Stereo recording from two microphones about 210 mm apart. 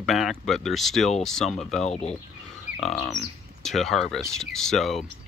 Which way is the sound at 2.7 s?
Centre (ahead or behind).